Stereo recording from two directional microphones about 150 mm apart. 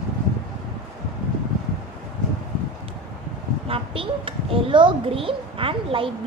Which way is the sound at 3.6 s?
40° right (ahead or behind).